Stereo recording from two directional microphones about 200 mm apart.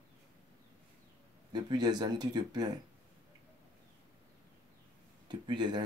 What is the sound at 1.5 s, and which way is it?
Speech, 20° right (ahead or behind).